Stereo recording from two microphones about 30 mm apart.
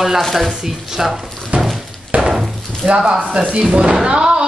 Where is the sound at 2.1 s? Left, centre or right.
Right.